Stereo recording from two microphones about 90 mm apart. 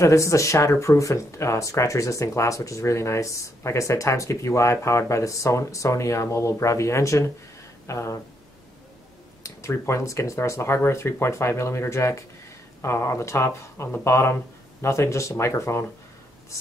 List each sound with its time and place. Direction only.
0.0 s speech: 35° left (ahead or behind)
9.4 s speech: 30° left (ahead or behind)